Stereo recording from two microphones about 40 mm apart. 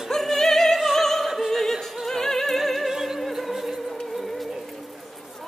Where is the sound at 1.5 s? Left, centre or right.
Centre.